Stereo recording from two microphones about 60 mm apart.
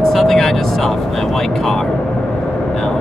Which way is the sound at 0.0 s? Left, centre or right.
Centre.